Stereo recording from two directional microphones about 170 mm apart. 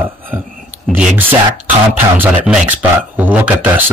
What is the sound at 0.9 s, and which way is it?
Speech, 10° right (ahead or behind).